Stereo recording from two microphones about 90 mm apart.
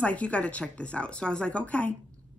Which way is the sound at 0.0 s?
15° left (ahead or behind).